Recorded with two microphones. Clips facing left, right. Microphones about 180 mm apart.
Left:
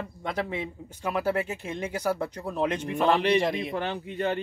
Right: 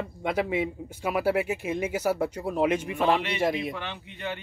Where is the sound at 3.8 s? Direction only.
40° left (ahead or behind).